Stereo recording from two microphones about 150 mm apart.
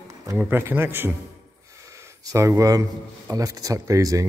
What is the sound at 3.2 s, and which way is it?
Speech, 25° right (ahead or behind).